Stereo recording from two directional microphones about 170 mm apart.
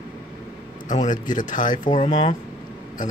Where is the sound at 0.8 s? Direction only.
45° left (ahead or behind).